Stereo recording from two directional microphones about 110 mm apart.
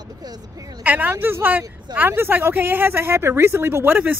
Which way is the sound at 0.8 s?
15° right (ahead or behind).